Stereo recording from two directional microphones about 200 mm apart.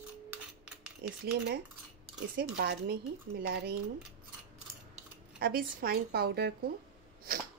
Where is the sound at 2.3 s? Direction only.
55° right (ahead or behind).